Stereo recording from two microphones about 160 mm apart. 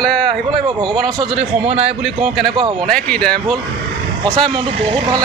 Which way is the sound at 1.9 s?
5° right (ahead or behind).